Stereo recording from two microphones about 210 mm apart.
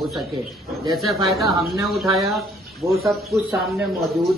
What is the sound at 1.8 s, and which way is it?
Speech, centre (ahead or behind).